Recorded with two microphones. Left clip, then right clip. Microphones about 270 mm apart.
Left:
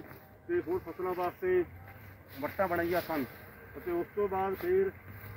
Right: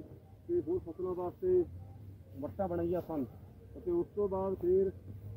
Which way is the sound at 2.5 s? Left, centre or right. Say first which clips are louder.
Left 4 dB; centre.